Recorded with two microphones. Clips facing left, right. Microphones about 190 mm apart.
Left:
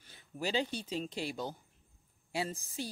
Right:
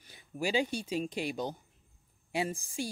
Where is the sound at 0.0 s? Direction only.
10° right (ahead or behind).